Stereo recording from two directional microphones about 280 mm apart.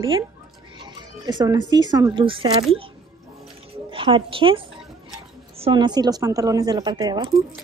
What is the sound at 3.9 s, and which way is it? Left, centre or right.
A woman's voice, centre.